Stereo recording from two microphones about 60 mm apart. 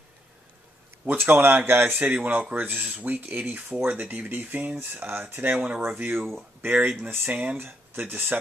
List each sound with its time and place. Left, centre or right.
1.0 s speech: right
2.8 s speech: right
6.1 s speech: centre
6.6 s speech: right
7.5 s speech: right